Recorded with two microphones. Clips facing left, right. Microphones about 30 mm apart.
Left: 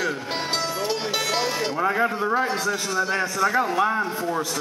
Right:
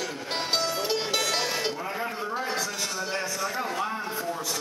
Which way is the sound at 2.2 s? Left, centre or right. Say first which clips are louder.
Left 7 dB; centre.